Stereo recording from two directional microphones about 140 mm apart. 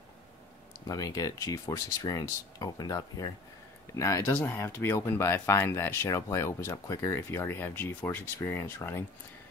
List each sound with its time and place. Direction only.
0.8 s speech: 25° left (ahead or behind)